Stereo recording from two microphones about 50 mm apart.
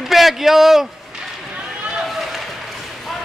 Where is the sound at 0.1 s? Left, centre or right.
Centre.